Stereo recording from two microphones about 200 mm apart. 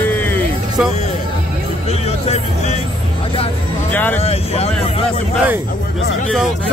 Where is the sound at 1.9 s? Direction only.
30° left (ahead or behind).